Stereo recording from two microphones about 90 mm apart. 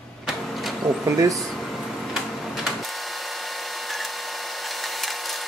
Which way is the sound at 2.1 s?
5° right (ahead or behind).